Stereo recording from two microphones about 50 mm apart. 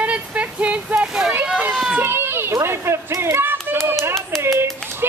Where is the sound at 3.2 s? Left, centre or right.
Right.